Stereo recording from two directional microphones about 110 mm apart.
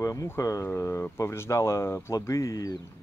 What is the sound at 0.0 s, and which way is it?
Speech, 30° left (ahead or behind).